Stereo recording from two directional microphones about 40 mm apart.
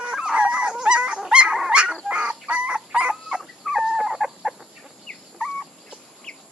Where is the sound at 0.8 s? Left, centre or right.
Right.